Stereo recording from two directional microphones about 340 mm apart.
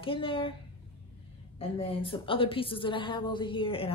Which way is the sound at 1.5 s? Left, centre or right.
Centre.